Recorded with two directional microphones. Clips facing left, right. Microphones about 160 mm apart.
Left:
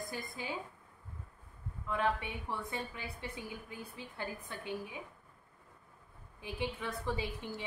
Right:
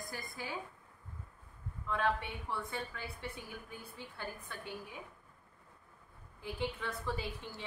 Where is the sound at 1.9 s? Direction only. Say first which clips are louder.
Even; 10° left (ahead or behind).